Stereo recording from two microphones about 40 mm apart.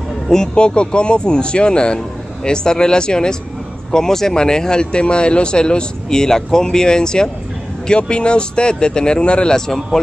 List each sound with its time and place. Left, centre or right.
0.3 s speech: centre